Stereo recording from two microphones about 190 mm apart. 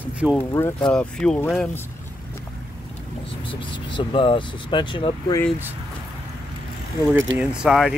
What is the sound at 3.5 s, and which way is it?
Speech, 25° left (ahead or behind).